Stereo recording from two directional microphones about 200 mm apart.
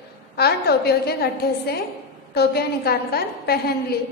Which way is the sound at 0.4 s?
55° left (ahead or behind).